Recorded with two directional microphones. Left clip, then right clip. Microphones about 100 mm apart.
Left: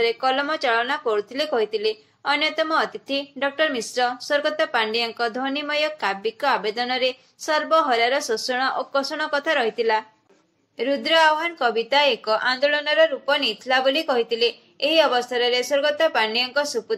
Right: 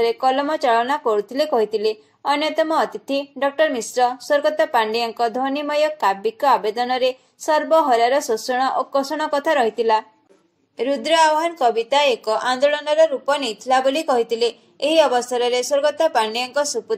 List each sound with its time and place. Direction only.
0.0 s a woman's voice: 15° right (ahead or behind)